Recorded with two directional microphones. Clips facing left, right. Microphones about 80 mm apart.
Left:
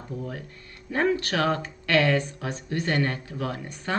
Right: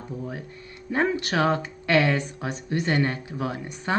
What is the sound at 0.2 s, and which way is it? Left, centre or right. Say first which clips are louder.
Speech: right 1 dB; centre.